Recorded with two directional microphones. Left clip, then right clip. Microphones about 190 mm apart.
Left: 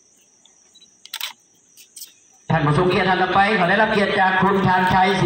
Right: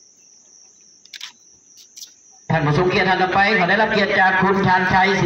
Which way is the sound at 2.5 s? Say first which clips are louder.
Even; 15° right (ahead or behind).